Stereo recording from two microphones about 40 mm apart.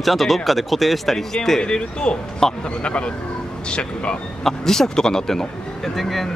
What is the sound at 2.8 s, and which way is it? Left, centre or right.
Speech, left.